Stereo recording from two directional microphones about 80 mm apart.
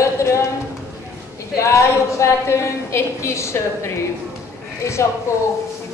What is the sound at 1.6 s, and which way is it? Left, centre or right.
A woman's voice, left.